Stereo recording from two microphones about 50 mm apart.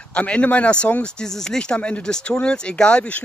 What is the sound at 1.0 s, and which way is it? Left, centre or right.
Speech, centre.